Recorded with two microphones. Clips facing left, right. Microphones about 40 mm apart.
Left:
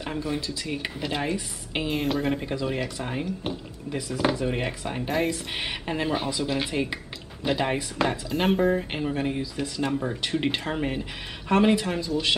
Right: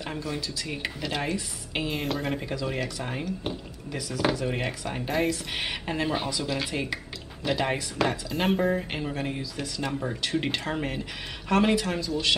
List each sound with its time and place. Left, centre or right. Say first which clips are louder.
0.8 s speech: left 1 dB; centre
2.4 s speech: left 2 dB; centre
2.7 s speech: left 2 dB; centre
4.5 s speech: left 2 dB; centre